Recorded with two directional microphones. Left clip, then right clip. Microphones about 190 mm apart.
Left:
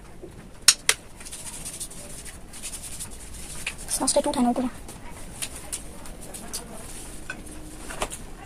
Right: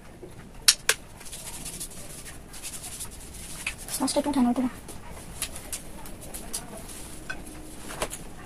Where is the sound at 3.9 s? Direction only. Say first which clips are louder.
Left 3 dB; 35° left (ahead or behind).